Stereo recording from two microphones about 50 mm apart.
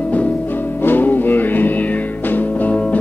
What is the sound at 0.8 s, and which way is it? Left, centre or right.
Music, left.